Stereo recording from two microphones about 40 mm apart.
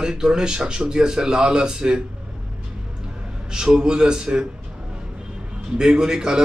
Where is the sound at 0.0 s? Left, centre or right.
Centre.